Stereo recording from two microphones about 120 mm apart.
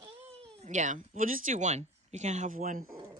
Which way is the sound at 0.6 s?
85° right.